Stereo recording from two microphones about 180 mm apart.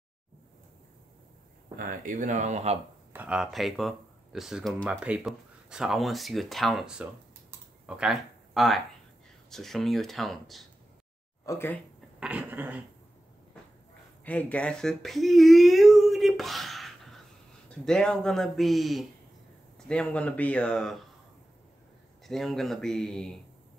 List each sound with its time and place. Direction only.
1.8 s speech: 50° right (ahead or behind)
3.1 s speech: 10° right (ahead or behind)
11.4 s speech: 15° left (ahead or behind)
12.2 s speech: 10° right (ahead or behind)
14.2 s speech: 10° left (ahead or behind)
22.2 s speech: centre (ahead or behind)